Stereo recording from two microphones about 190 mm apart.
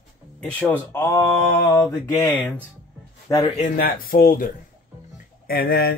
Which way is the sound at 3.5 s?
45° left (ahead or behind).